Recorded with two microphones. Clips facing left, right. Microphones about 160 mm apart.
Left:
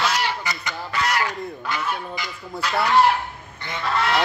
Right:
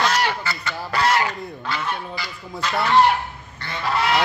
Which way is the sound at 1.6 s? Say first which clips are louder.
Right 1 dB; 15° left (ahead or behind).